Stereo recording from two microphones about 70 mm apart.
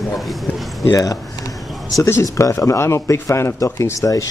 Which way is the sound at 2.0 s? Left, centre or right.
Left.